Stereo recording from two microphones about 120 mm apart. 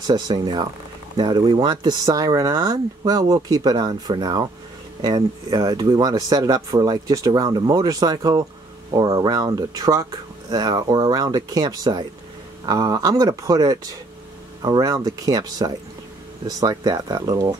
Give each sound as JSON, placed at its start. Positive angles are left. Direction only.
{"t": 0.0, "sound": "speech", "side_deg": -35}